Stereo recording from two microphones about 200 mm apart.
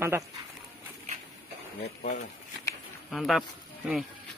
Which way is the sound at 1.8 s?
35° left (ahead or behind).